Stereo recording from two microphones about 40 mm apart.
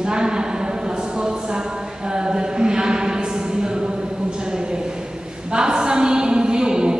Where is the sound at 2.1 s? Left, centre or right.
Right.